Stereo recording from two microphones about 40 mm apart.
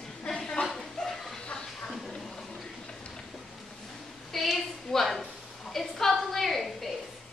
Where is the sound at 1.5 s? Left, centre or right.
Left.